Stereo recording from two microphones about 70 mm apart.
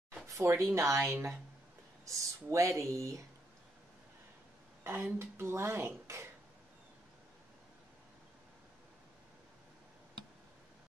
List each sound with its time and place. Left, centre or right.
0.4 s speech: right
1.1 s speech: right
2.0 s speech: right
4.8 s speech: right